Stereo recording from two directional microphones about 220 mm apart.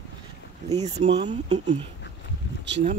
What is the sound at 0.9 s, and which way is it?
Speech, 25° right (ahead or behind).